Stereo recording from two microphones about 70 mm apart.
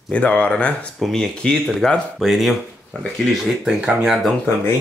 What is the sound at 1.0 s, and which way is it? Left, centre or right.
Speech, centre.